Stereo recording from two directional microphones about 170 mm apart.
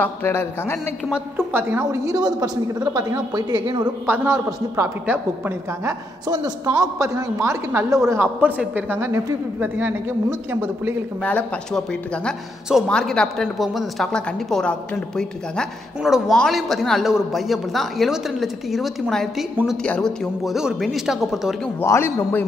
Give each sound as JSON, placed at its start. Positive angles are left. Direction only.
{"t": 0.0, "sound": "a man's voice", "side_deg": 15}
{"t": 1.1, "sound": "a woman's voice", "side_deg": -15}
{"t": 3.8, "sound": "a woman's voice", "side_deg": -10}
{"t": 6.2, "sound": "a woman's voice", "side_deg": -25}
{"t": 11.2, "sound": "speech", "side_deg": 5}
{"t": 21.8, "sound": "a man's voice", "side_deg": 15}